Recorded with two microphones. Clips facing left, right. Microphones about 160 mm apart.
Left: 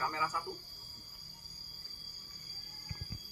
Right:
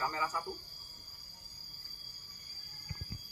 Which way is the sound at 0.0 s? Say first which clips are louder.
Right 1 dB; centre (ahead or behind).